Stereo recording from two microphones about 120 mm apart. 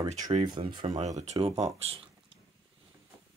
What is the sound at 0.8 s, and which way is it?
Speech, 75° right (ahead or behind).